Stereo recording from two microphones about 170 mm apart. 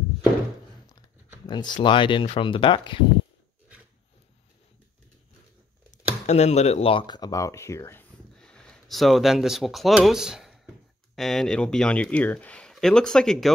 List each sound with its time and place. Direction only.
1.4 s speech: 25° left (ahead or behind)
6.2 s speech: 40° left (ahead or behind); by 8.0 s 15° left (ahead or behind)
8.4 s speech: 5° left (ahead or behind)